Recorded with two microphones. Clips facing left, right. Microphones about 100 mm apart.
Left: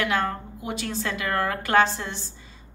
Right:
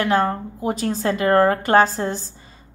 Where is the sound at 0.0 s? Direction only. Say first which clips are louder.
Right 6 dB; 35° right (ahead or behind).